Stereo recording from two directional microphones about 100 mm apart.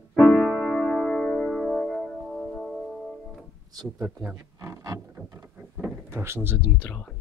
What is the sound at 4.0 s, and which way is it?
Speech, 20° right (ahead or behind).